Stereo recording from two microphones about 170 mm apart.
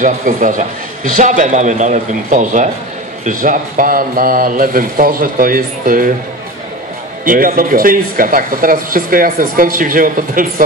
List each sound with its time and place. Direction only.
0.0 s a man's voice: 50° right (ahead or behind)
7.2 s speech: 55° right (ahead or behind)